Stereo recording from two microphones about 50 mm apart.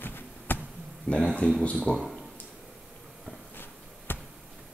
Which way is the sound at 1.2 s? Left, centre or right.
Centre.